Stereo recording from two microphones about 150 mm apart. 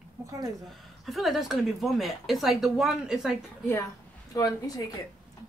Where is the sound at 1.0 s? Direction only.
Centre (ahead or behind).